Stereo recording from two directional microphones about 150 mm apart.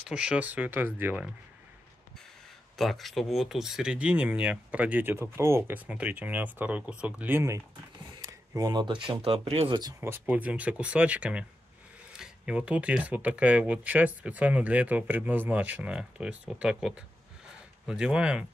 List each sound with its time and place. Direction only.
0.0 s speech: 5° right (ahead or behind)
2.8 s speech: centre (ahead or behind); by 9.8 s 35° right (ahead or behind)
9.9 s speech: 15° right (ahead or behind)